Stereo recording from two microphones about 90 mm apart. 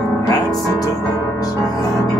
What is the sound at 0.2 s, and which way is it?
Music, 45° left (ahead or behind).